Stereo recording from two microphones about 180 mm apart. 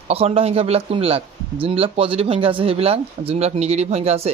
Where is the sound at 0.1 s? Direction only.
35° right (ahead or behind).